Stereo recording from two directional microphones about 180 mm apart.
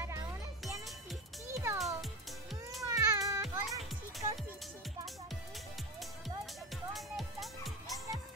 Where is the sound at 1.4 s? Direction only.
15° right (ahead or behind).